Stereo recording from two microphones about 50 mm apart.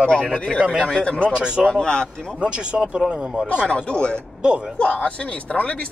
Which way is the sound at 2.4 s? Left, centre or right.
Right.